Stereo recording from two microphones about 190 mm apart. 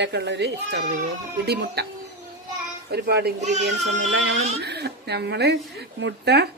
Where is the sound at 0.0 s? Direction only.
65° right (ahead or behind).